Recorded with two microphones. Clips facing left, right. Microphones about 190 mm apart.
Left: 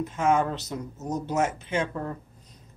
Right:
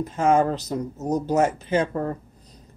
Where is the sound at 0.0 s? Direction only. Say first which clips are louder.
Right 4 dB; 35° right (ahead or behind).